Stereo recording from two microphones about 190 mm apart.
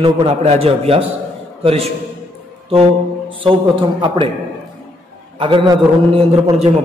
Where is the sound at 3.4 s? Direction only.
25° right (ahead or behind).